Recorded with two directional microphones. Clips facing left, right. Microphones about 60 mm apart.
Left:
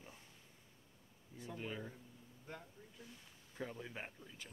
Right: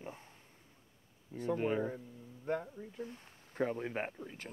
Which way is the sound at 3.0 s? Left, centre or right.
Right.